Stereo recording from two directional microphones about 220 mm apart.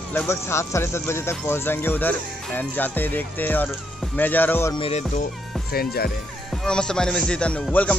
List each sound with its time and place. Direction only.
0.1 s speech: 10° left (ahead or behind)
4.7 s music: 25° left (ahead or behind)
5.7 s speech: 45° left (ahead or behind)
6.6 s speech: 5° left (ahead or behind)